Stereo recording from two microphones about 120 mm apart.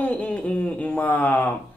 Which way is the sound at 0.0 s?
10° left (ahead or behind).